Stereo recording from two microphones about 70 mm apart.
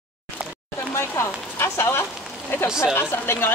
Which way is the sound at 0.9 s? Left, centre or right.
Left.